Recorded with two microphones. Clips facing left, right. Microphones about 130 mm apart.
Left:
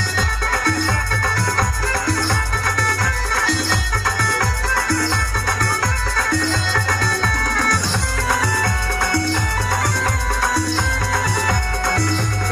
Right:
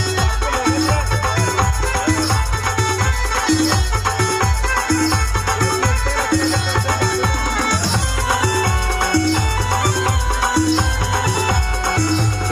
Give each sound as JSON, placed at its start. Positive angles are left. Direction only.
{"t": 3.3, "sound": "music", "side_deg": -20}